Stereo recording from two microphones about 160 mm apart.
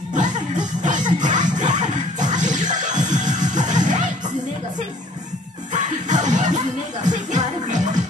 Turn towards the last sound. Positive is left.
turn(degrees=-50)  # may be behind; listen again after turning